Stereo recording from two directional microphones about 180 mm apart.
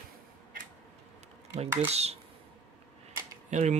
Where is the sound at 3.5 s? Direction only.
40° right (ahead or behind).